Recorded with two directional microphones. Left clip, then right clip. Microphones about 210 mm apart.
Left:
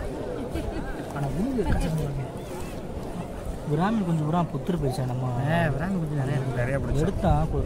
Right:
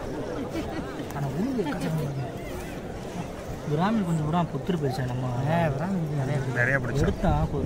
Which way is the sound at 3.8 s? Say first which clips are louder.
Even; 35° left (ahead or behind).